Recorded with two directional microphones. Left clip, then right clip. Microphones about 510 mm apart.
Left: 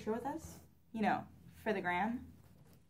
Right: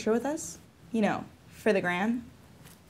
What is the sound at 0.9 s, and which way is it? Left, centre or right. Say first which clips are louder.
A woman's voice: right 6 dB; centre.